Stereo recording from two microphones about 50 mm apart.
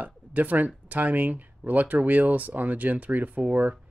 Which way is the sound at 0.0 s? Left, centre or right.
Right.